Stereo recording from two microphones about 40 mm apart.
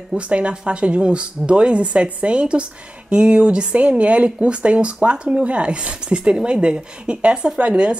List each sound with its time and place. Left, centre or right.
0.3 s speech: right